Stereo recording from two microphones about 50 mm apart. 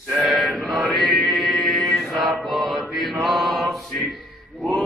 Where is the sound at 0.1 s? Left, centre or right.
Centre.